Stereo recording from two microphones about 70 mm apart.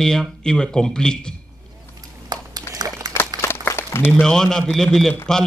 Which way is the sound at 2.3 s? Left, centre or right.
Right.